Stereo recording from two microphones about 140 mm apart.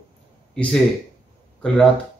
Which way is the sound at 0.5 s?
5° left (ahead or behind).